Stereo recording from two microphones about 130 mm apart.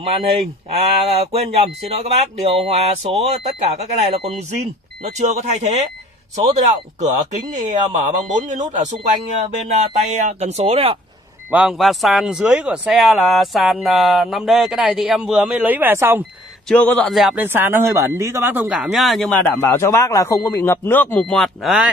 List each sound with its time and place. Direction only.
0.7 s speech: 55° right (ahead or behind)
8.2 s a man's voice: 70° right (ahead or behind); by 11.0 s 50° right (ahead or behind)
11.5 s speech: centre (ahead or behind)
16.6 s a man's voice: 10° left (ahead or behind)
17.1 s speech: centre (ahead or behind)
17.4 s speech: 15° right (ahead or behind)
18.8 s speech: centre (ahead or behind)
19.6 s a man's voice: 20° left (ahead or behind)
21.6 s speech: 10° right (ahead or behind)